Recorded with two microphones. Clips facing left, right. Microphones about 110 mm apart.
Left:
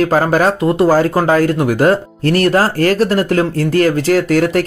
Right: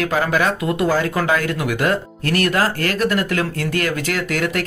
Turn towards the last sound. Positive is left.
turn(degrees=35)  # may be behind; listen again after turning